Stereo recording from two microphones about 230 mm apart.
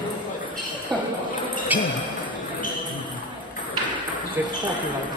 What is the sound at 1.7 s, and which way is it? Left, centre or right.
Speech, centre.